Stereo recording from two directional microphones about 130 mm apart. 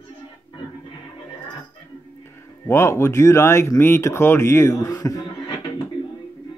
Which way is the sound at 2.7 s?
20° left (ahead or behind).